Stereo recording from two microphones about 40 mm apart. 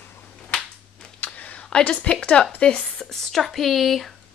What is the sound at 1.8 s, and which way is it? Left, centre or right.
A woman's voice, left.